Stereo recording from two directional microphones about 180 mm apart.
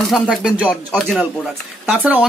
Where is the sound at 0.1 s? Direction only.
5° right (ahead or behind).